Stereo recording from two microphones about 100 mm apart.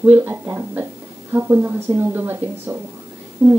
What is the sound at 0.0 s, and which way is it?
A woman's voice, 20° right (ahead or behind).